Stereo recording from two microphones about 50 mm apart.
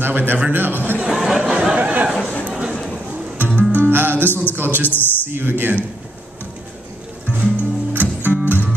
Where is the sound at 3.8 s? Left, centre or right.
Right.